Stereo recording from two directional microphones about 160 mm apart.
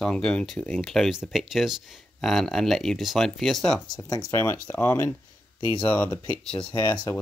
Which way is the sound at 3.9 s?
20° left (ahead or behind).